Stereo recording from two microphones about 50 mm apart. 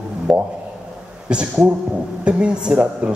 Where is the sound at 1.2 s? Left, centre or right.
Right.